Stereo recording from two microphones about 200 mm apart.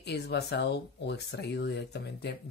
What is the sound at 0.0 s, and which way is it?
Speech, 55° left (ahead or behind).